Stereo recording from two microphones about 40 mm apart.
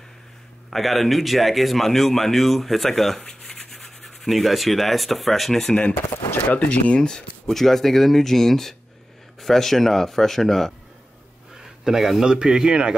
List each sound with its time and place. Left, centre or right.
0.7 s speech: centre
3.2 s a sound: centre
3.7 s rub: centre
6.5 s speech: left
7.0 s speech: centre
7.5 s speech: centre
11.5 s a man's voice: centre